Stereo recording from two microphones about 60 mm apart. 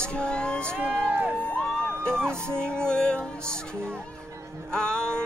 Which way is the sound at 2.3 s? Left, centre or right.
Right.